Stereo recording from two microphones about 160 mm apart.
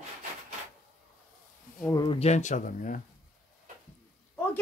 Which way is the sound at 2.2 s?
45° left (ahead or behind).